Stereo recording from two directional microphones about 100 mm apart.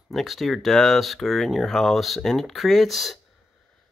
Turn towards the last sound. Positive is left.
turn(degrees=0)  # may be behind; listen again after turning